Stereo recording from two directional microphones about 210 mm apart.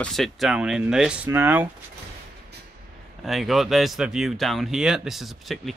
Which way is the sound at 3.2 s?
Centre (ahead or behind).